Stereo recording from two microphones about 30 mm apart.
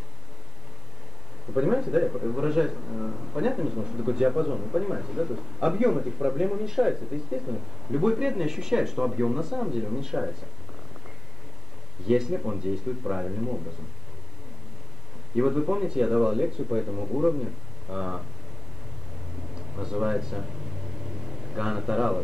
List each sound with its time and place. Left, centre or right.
1.6 s a man's voice: right
3.3 s a man's voice: centre
12.0 s speech: centre
12.8 s a man's voice: centre
15.5 s a man's voice: centre
17.8 s speech: right
19.7 s a man's voice: right
21.0 s a sound: centre